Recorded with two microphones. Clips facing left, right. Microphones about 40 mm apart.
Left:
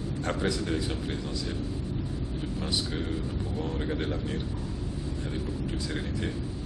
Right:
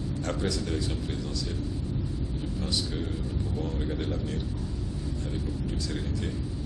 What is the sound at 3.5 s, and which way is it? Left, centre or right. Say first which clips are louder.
Speech: left 2 dB; centre.